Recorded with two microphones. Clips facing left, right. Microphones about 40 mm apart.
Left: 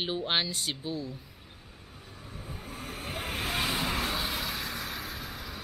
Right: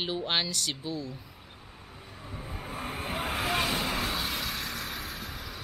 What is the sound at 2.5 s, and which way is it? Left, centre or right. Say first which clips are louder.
Vehicle: right 4 dB; right.